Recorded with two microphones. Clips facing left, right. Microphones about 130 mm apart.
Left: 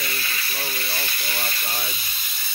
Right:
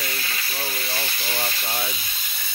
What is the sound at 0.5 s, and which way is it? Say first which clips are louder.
Speech: right 3 dB; 10° right (ahead or behind).